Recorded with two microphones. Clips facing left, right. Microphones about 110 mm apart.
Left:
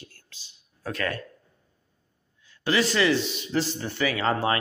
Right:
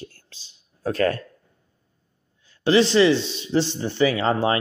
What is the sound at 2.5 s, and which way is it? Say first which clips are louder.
Speech: right 7 dB; 30° right (ahead or behind).